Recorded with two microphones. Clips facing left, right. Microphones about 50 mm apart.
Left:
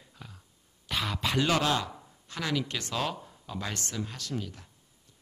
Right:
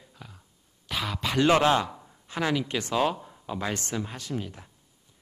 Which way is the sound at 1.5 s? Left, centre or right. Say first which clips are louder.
Right 8 dB; right.